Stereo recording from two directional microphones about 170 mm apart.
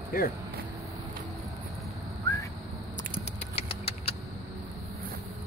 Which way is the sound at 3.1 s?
35° left (ahead or behind).